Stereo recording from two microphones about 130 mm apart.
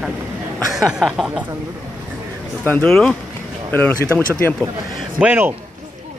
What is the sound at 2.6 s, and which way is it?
A man's voice, 15° left (ahead or behind).